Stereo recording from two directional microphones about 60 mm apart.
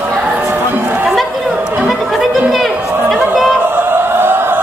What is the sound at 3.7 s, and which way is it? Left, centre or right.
Chant, right.